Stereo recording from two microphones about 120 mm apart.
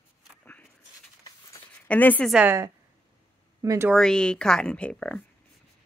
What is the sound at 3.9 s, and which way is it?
Speech, 5° left (ahead or behind).